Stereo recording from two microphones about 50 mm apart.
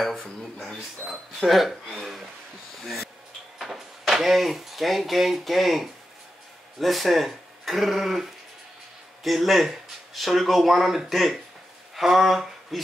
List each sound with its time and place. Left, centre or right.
1.4 s speech: centre